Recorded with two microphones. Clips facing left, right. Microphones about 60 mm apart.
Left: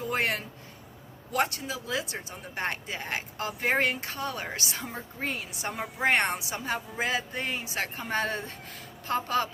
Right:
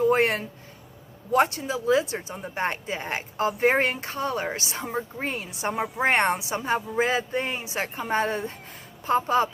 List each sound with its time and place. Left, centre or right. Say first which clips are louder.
0.1 s a woman's voice: right 7 dB; right